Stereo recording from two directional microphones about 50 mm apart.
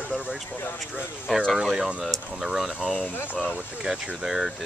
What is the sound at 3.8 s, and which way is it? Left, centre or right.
Speech, centre.